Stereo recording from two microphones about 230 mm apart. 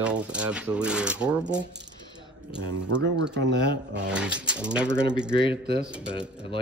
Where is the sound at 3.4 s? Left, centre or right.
Right.